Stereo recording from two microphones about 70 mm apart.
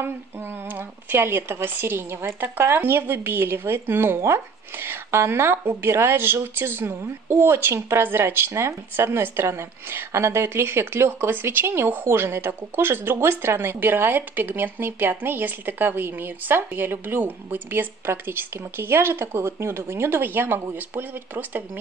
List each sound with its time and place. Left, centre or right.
0.0 s a woman's voice: right